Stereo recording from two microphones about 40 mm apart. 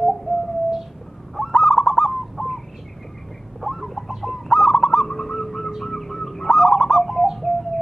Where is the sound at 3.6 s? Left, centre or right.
Centre.